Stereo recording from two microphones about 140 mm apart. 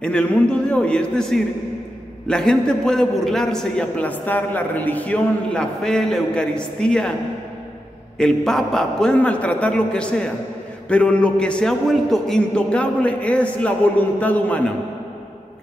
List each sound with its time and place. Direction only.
0.0 s a man's voice: 10° left (ahead or behind)
8.2 s a man's voice: 5° left (ahead or behind)